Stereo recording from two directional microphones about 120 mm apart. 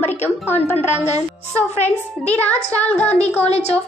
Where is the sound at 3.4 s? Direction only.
60° left (ahead or behind).